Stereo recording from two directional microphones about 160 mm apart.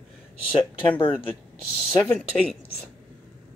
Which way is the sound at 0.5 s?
35° left (ahead or behind).